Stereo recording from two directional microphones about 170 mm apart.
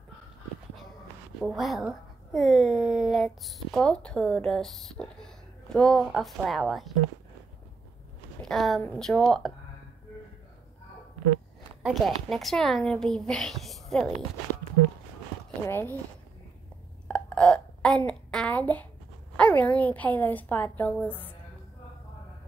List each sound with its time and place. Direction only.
1.4 s a woman's voice: centre (ahead or behind)
8.4 s a woman's voice: centre (ahead or behind)
11.8 s a woman's voice: centre (ahead or behind)
15.6 s a woman's voice: 15° left (ahead or behind)
17.1 s a sound: 5° left (ahead or behind)
19.3 s a woman's voice: 10° left (ahead or behind)